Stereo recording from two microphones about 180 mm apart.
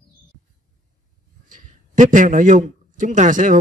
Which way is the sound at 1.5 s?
45° right (ahead or behind).